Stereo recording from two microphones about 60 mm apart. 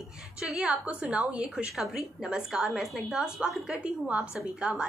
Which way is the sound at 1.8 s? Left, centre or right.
Centre.